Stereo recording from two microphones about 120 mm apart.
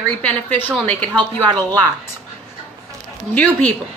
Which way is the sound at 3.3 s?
10° left (ahead or behind).